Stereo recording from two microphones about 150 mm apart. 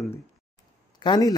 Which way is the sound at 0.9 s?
30° left (ahead or behind).